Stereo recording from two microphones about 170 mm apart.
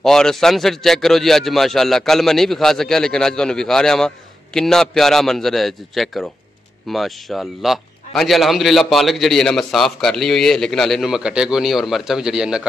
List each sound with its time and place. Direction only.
0.0 s speech: centre (ahead or behind)